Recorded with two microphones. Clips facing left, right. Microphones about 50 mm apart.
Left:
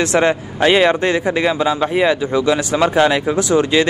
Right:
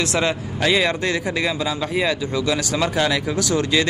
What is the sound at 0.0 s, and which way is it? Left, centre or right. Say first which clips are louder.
Speech: left 6 dB; left.